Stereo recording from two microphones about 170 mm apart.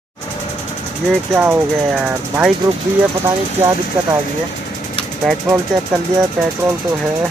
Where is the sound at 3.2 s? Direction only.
15° right (ahead or behind).